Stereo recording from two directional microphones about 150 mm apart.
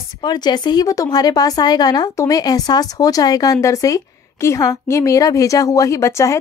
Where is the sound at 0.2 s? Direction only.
30° left (ahead or behind).